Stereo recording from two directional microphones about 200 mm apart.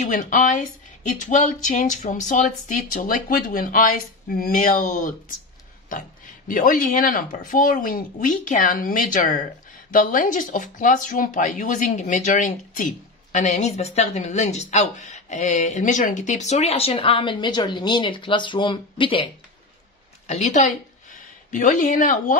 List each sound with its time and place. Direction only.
0.0 s speech: 40° left (ahead or behind)
20.2 s a woman's voice: 35° left (ahead or behind)